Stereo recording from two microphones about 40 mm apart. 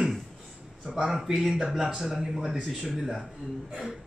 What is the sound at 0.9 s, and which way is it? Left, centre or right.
Speech, centre.